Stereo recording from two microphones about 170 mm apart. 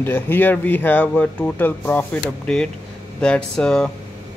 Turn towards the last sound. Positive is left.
turn(degrees=5)  # may be behind; listen again after turning